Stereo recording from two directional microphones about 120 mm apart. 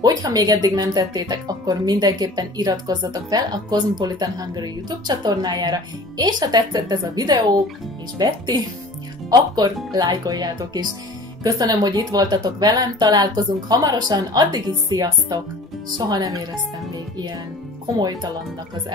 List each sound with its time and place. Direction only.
0.0 s speech: 35° right (ahead or behind)
9.9 s speech: 35° right (ahead or behind)